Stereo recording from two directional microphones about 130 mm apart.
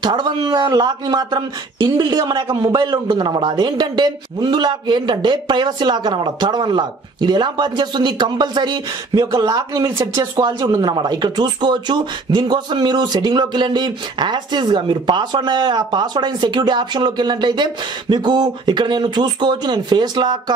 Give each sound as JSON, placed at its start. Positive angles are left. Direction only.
{"t": 0.0, "sound": "speech", "side_deg": -35}